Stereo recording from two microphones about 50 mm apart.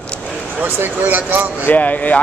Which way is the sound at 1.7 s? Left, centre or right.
Left.